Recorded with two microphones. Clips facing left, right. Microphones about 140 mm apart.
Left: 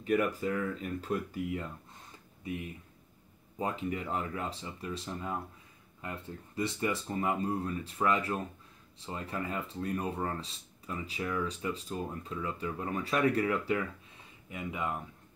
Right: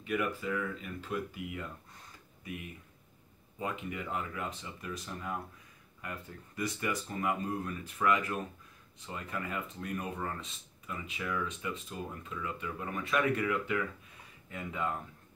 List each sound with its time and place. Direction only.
0.0 s speech: 40° left (ahead or behind)
3.5 s speech: 35° left (ahead or behind)
14.5 s speech: 15° left (ahead or behind)